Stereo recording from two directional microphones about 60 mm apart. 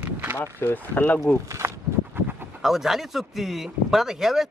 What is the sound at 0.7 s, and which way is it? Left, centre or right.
Speech, left.